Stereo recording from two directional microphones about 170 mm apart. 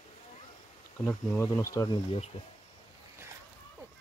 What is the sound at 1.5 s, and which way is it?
Speech, 20° left (ahead or behind).